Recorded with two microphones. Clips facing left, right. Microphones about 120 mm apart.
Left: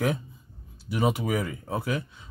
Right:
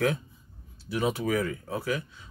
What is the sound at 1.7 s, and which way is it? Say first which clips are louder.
Speech: left 3 dB; 25° left (ahead or behind).